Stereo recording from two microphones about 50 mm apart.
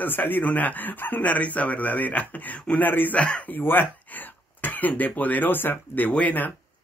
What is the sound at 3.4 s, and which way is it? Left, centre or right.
Speech, left.